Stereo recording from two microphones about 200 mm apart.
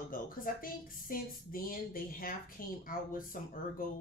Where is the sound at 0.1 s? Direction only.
45° left (ahead or behind).